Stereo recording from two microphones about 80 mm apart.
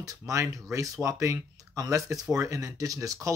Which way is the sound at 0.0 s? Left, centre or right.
Right.